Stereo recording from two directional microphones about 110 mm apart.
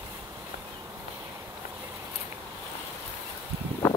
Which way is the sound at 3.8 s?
20° left (ahead or behind).